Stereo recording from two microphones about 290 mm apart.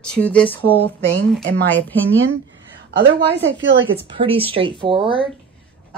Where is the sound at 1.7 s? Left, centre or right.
Centre.